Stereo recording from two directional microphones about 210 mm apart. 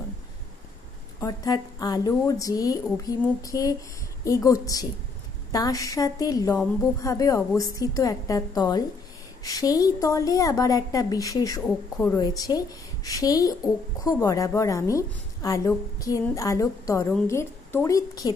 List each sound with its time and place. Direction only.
1.2 s a woman's voice: 15° left (ahead or behind)